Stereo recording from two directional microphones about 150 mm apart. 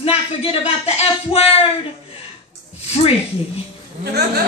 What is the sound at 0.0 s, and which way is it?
A woman's voice, 40° left (ahead or behind).